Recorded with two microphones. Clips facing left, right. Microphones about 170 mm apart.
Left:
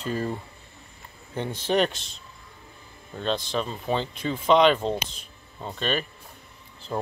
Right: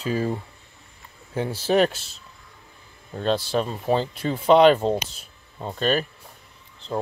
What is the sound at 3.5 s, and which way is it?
Speech, 40° right (ahead or behind).